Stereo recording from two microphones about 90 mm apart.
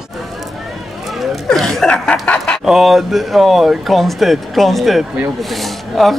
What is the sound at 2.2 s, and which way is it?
Chicken, 15° left (ahead or behind).